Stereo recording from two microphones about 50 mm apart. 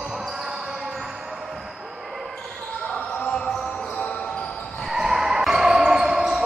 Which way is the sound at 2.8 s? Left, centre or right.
Centre.